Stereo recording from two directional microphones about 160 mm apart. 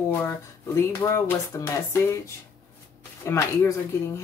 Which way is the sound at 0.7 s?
15° left (ahead or behind).